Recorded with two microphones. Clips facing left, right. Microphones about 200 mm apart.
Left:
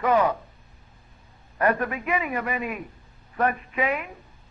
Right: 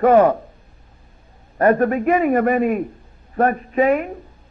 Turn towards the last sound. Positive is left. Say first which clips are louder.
# right 10 dB
turn(degrees=-45)  # may be behind; listen again after turning